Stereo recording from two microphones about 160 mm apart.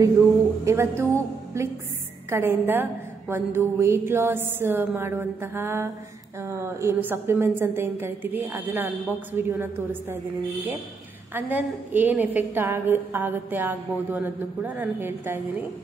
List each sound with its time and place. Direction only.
0.7 s a woman's voice: 20° right (ahead or behind)
11.3 s a woman's voice: 10° right (ahead or behind)